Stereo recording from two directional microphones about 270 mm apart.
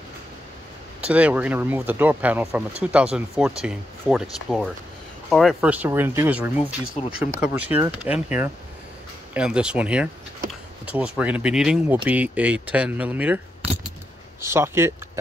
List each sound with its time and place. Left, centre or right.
1.0 s speech: centre
7.0 s speech: left
7.6 s speech: centre
14.4 s speech: centre